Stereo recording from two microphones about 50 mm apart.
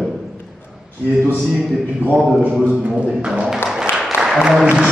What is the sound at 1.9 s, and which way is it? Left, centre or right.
Speech, right.